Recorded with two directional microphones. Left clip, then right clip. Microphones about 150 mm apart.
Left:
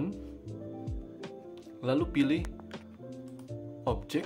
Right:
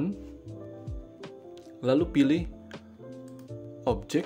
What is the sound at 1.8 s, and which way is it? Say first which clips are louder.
Speech: right 5 dB; 25° right (ahead or behind).